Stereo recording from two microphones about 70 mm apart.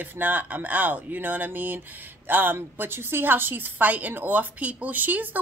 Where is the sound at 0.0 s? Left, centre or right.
Right.